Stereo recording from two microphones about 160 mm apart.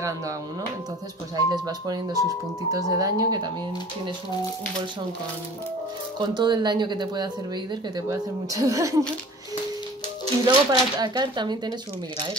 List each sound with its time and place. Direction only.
1.3 s speech: 25° right (ahead or behind)
6.1 s speech: 30° right (ahead or behind)
10.4 s speech: 25° right (ahead or behind)